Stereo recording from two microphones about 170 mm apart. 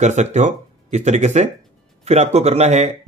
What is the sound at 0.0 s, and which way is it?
Speech, 45° right (ahead or behind).